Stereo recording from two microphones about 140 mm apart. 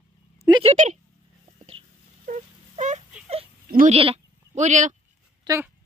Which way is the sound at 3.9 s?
45° right (ahead or behind).